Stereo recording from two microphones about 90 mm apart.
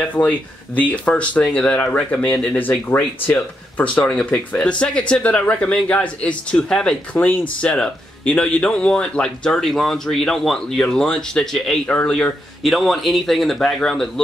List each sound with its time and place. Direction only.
0.1 s speech: 20° left (ahead or behind)
12.6 s speech: centre (ahead or behind)